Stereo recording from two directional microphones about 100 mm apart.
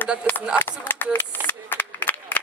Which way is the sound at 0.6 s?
20° left (ahead or behind).